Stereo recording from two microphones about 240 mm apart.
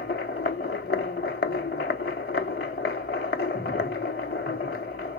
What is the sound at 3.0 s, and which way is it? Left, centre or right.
Music, left.